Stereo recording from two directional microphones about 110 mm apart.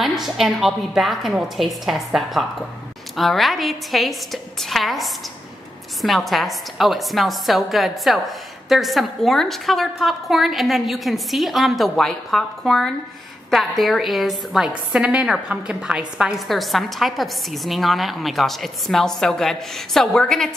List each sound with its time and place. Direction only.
0.0 s a woman's voice: centre (ahead or behind)